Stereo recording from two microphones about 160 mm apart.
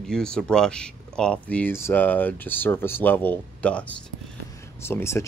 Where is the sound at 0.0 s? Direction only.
5° left (ahead or behind).